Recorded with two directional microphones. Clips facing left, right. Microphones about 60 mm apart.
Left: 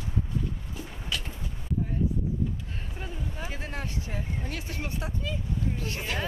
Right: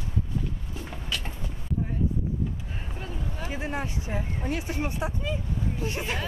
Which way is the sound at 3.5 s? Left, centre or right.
Centre.